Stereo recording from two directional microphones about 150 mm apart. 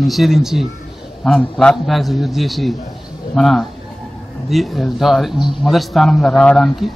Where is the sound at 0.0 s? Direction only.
Centre (ahead or behind).